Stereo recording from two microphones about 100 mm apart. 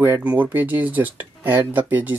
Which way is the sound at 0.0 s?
15° right (ahead or behind).